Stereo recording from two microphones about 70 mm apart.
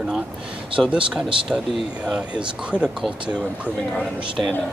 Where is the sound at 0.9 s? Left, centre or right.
Centre.